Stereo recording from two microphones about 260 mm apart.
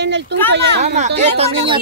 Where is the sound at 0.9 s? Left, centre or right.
Right.